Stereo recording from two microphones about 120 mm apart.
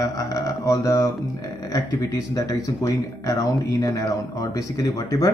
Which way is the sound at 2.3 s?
30° left (ahead or behind).